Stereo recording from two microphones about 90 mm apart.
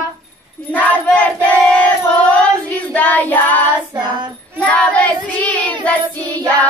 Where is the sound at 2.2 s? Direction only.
15° left (ahead or behind).